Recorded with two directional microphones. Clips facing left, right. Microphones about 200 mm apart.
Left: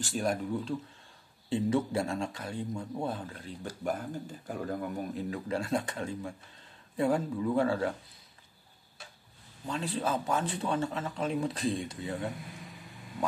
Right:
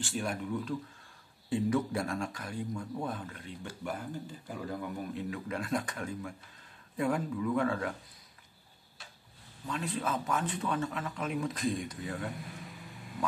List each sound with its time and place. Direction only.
0.0 s a man's voice: 40° left (ahead or behind)
1.5 s a man's voice: 25° left (ahead or behind)
9.7 s a man's voice: 30° left (ahead or behind)